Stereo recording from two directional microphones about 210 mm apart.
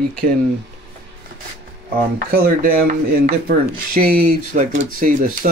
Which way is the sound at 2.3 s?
45° right (ahead or behind).